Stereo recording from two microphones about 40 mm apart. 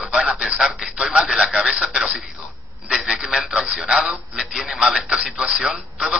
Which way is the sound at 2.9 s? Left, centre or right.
Centre.